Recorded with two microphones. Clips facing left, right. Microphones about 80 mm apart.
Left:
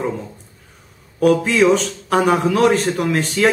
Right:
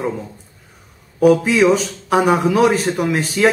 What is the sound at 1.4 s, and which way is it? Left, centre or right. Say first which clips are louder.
A man's voice: even; centre.